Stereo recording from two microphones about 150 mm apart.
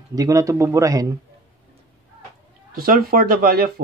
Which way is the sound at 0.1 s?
25° right (ahead or behind).